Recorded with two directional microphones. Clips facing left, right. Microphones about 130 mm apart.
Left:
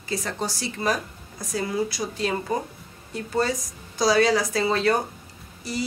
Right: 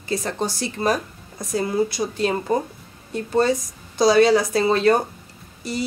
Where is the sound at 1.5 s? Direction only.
25° right (ahead or behind).